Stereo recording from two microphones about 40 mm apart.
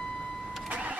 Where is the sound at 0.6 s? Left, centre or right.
Right.